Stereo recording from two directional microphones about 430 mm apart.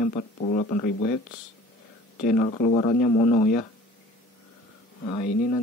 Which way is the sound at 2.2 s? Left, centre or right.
Centre.